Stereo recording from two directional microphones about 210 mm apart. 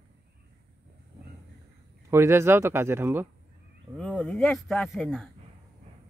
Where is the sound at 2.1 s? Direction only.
10° right (ahead or behind).